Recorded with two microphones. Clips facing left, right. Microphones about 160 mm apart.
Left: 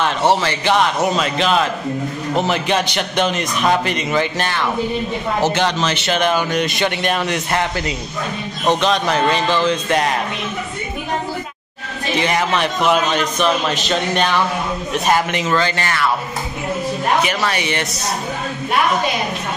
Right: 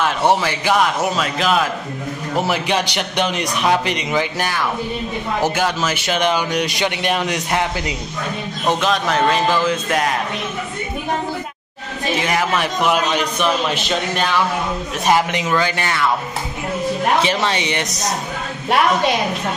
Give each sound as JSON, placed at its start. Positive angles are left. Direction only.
{"t": 0.0, "sound": "a man's voice", "side_deg": -10}
{"t": 8.6, "sound": "a man's voice", "side_deg": 0}
{"t": 12.2, "sound": "a man's voice", "side_deg": -5}
{"t": 17.2, "sound": "speech", "side_deg": -25}